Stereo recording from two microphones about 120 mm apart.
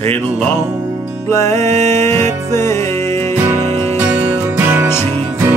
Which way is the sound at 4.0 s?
15° right (ahead or behind).